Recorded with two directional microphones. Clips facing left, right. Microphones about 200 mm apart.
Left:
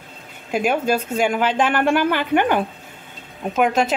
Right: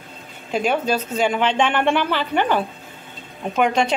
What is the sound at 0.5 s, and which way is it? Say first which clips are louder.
A woman's voice: left 1 dB; 10° left (ahead or behind).